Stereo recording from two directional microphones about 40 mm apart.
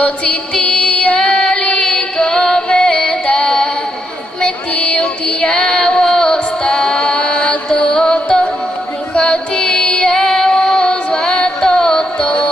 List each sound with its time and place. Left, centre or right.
0.0 s music: left
3.3 s music: centre
5.8 s a sound: centre
6.3 s music: centre
9.8 s music: left
10.1 s female singing: centre
10.8 s music: left
11.1 s music: centre